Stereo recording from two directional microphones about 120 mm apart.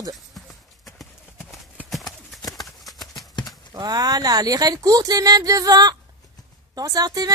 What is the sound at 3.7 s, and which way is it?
Speech, 35° right (ahead or behind).